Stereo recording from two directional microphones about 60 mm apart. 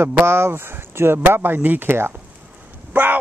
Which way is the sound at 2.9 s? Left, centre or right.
Right.